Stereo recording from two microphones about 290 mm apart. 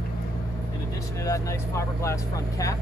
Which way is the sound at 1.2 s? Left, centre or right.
Centre.